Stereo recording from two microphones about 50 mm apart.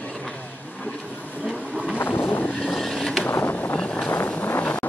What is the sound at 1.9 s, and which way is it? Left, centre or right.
Vehicle, left.